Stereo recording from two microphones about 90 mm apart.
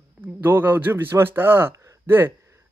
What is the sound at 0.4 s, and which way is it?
A man's voice, 20° right (ahead or behind).